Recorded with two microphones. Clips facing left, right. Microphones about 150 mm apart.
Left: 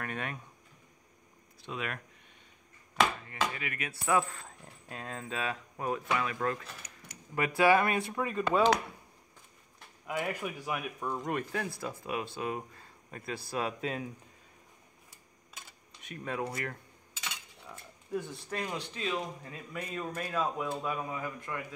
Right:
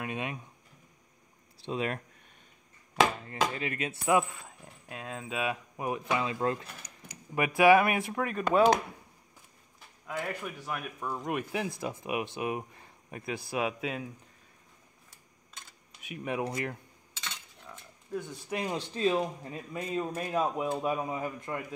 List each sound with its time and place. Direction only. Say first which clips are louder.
0.0 s speech: right 2 dB; 15° right (ahead or behind)
1.6 s speech: right 6 dB; 30° right (ahead or behind)
3.5 s speech: right 5 dB; 30° right (ahead or behind)
7.3 s speech: right 4 dB; 15° right (ahead or behind)
10.0 s speech: left 1 dB; 10° left (ahead or behind)
16.0 s speech: right 3 dB; 10° right (ahead or behind)
17.2 s cutlery: even; 5° left (ahead or behind)
18.5 s speech: right 4 dB; 15° right (ahead or behind)
18.8 s a man's voice: right 7 dB; 35° right (ahead or behind)